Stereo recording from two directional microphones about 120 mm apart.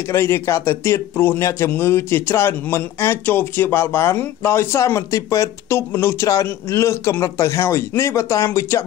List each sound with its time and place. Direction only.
0.1 s speech: 20° left (ahead or behind)